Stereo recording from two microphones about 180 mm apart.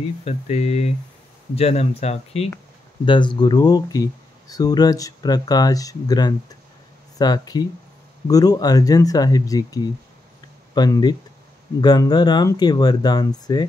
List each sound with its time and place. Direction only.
0.2 s speech: 35° left (ahead or behind)